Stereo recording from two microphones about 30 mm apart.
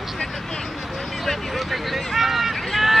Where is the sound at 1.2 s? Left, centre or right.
Centre.